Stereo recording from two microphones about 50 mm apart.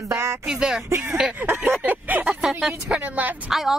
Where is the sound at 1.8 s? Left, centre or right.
Right.